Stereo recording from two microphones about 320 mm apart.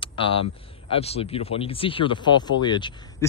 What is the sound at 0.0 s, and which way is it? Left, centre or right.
Speech, centre.